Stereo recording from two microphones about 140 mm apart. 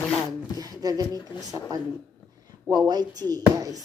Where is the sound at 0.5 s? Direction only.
25° right (ahead or behind).